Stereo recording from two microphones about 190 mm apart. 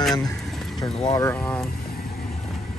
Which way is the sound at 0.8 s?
20° left (ahead or behind).